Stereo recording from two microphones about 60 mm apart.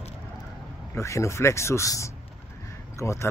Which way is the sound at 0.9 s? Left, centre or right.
Left.